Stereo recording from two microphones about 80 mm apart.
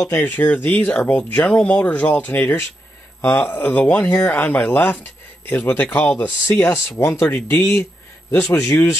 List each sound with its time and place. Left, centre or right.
0.1 s speech: left
7.2 s speech: left